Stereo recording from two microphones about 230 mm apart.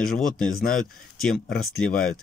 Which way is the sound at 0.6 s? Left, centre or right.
Left.